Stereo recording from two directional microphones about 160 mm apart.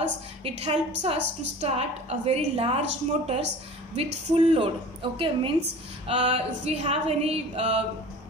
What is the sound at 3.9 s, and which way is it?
A woman's voice, 40° right (ahead or behind).